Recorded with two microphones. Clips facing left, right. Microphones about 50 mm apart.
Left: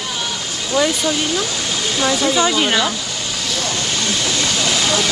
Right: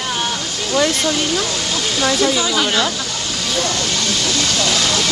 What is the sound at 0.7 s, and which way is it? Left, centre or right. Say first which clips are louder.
Speech: even; centre.